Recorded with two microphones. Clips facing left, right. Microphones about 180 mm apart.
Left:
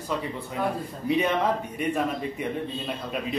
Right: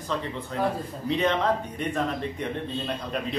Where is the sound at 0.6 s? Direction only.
5° right (ahead or behind).